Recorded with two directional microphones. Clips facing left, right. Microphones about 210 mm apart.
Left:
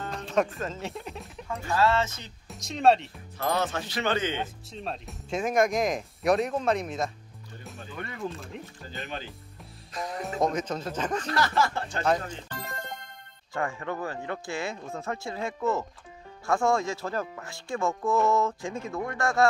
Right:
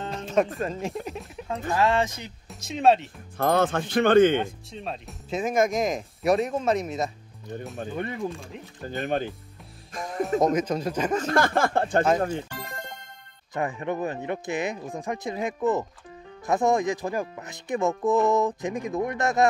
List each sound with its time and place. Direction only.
0.6 s speech: 15° right (ahead or behind)
0.9 s speech: centre (ahead or behind)
1.5 s speech: 15° right (ahead or behind)
2.6 s speech: centre (ahead or behind)
3.3 s speech: 55° right (ahead or behind)
4.7 s speech: centre (ahead or behind)
7.9 s speech: 20° right (ahead or behind)
8.8 s speech: 55° right (ahead or behind)
10.5 s speech: 10° right (ahead or behind)
11.2 s speech: 50° right (ahead or behind)
13.5 s speech: 20° right (ahead or behind)